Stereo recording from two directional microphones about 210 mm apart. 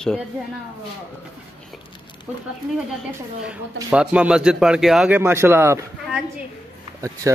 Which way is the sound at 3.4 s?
5° right (ahead or behind).